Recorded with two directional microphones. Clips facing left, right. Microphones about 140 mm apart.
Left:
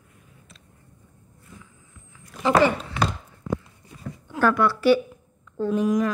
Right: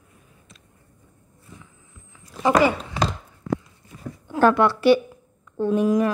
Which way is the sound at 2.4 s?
15° right (ahead or behind).